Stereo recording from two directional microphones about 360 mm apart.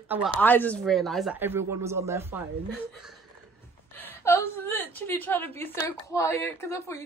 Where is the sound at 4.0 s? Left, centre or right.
Centre.